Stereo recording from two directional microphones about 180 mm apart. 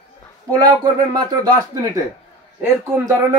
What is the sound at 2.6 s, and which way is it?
Speech, 20° right (ahead or behind).